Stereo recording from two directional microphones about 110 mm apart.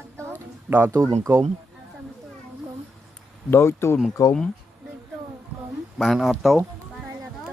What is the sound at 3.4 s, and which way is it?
Speech, 25° left (ahead or behind).